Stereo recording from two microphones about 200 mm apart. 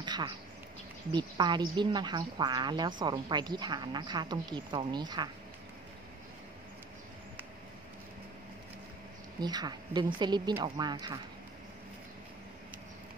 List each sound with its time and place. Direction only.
0.0 s a sound: 20° right (ahead or behind)
1.1 s a woman's voice: 20° right (ahead or behind)
9.4 s a woman's voice: 20° right (ahead or behind)